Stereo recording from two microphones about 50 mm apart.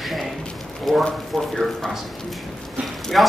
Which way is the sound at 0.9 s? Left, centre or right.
Centre.